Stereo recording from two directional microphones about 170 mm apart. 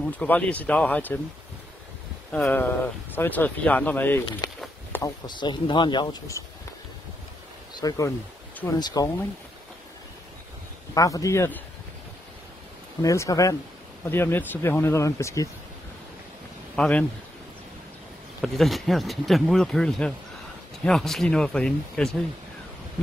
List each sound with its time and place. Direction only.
0.0 s speech: 5° left (ahead or behind)
2.3 s speech: 5° left (ahead or behind)
4.4 s a sound: 20° left (ahead or behind)
4.9 s speech: 20° left (ahead or behind)
7.7 s speech: 20° left (ahead or behind)
11.0 s speech: 20° left (ahead or behind)
13.0 s speech: 20° left (ahead or behind)
16.7 s speech: 5° left (ahead or behind)
18.4 s speech: centre (ahead or behind)